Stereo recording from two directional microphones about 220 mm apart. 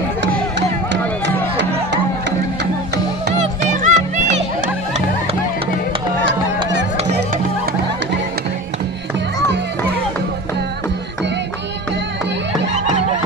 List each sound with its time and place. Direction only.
1.2 s music: 50° right (ahead or behind)
3.3 s music: 30° right (ahead or behind)